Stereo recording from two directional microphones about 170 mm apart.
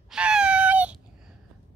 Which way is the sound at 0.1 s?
5° right (ahead or behind).